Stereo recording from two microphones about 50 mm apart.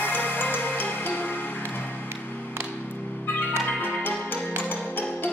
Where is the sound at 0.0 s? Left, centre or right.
Left.